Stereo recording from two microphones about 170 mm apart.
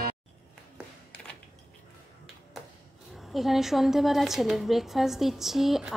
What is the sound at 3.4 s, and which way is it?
A woman's voice, centre (ahead or behind).